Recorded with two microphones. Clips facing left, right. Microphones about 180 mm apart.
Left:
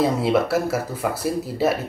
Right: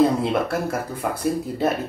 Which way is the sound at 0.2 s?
5° left (ahead or behind).